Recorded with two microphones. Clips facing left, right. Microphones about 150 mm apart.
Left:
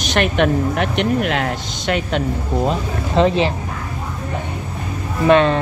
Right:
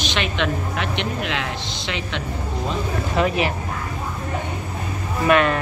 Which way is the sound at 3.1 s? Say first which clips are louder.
Left 6 dB; 25° left (ahead or behind).